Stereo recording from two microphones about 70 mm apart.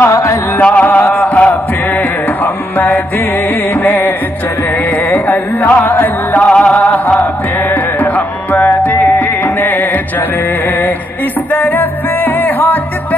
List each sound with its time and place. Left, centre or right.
0.0 s music: left
0.6 s music: centre
0.8 s music: left
1.3 s chant: left
2.4 s music: left
5.1 s music: left
11.5 s music: left